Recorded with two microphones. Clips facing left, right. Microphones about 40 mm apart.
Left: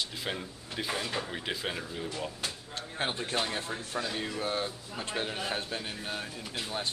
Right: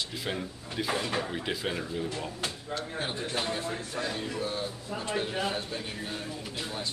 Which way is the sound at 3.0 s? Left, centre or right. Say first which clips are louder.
Left 5 dB; left.